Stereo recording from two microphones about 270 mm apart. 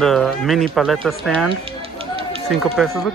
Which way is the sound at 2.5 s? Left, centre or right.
Centre.